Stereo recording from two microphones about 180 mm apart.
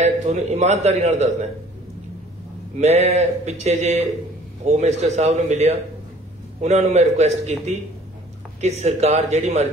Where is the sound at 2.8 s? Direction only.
35° right (ahead or behind).